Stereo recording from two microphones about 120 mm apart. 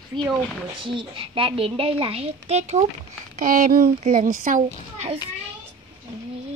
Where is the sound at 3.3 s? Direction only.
85° right.